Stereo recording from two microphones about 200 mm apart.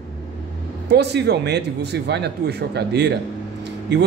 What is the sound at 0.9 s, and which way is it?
Speech, 55° right (ahead or behind).